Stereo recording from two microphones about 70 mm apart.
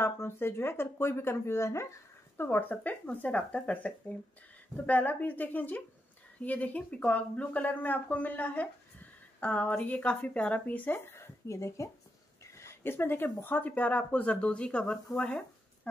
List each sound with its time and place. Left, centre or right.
0.0 s speech: left
2.3 s speech: left
11.1 s speech: left
12.5 s speech: left; by 15.0 s centre
15.1 s a sound: centre